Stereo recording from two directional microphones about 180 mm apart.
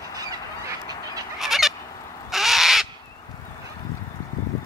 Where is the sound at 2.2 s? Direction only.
Centre (ahead or behind).